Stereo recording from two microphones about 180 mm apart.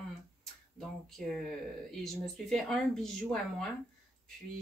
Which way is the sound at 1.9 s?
Centre (ahead or behind).